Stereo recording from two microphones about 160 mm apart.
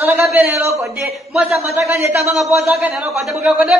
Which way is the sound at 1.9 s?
15° right (ahead or behind).